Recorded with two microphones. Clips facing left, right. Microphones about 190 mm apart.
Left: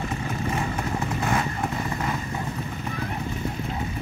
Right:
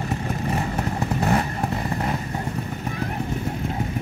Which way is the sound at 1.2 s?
35° right (ahead or behind).